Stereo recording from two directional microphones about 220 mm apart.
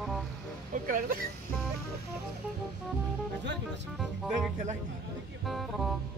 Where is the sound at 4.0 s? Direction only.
Centre (ahead or behind).